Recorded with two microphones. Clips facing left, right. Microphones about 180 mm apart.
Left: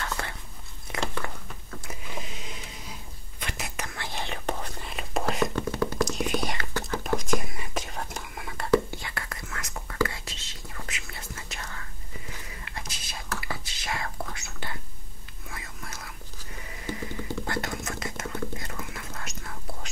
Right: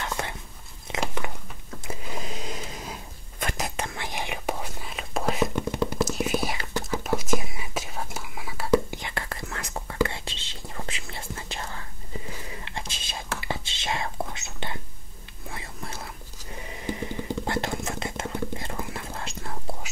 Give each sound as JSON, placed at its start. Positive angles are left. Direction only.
{"t": 0.0, "sound": "whispering", "side_deg": -20}
{"t": 0.9, "sound": "biting", "side_deg": -20}
{"t": 1.9, "sound": "a sound", "side_deg": -40}
{"t": 3.3, "sound": "whispering", "side_deg": -45}
{"t": 5.5, "sound": "a sound", "side_deg": -15}
{"t": 5.9, "sound": "whispering", "side_deg": -5}
{"t": 8.9, "sound": "whispering", "side_deg": -25}